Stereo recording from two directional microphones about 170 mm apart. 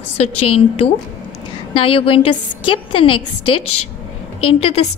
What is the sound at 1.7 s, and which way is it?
A woman's voice, 30° left (ahead or behind).